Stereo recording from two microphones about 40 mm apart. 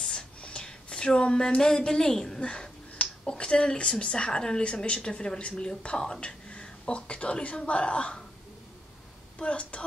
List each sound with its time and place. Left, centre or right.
0.1 s a sound: left
2.4 s speech: left
9.4 s speech: left